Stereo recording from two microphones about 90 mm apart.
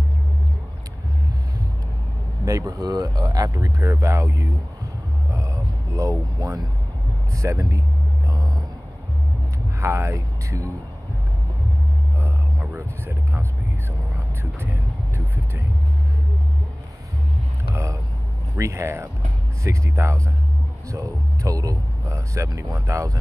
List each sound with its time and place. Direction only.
2.4 s speech: 40° right (ahead or behind)
5.3 s a sound: 35° right (ahead or behind)
6.3 s speech: 35° right (ahead or behind)
9.8 s speech: 30° right (ahead or behind)
12.7 s speech: 25° right (ahead or behind)
14.4 s vehicle: 25° right (ahead or behind)
18.6 s speech: 30° right (ahead or behind)